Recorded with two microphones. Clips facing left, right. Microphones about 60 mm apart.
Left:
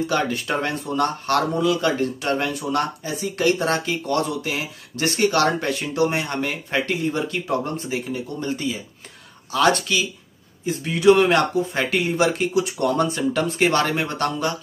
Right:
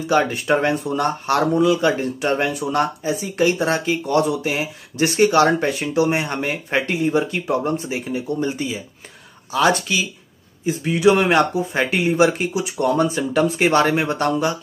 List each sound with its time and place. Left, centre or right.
0.0 s speech: centre